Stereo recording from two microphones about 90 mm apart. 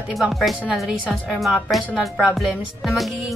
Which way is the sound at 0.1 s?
5° right (ahead or behind).